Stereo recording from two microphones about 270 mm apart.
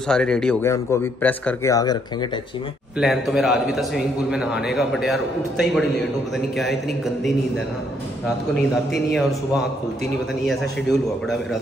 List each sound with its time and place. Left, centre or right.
0.1 s speech: centre
3.0 s a man's voice: centre
10.4 s a man's voice: centre